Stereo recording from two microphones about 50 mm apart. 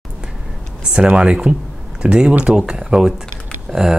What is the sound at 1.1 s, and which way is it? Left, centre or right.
Speech, centre.